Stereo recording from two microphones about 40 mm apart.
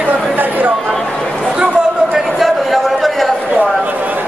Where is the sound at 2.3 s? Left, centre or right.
Centre.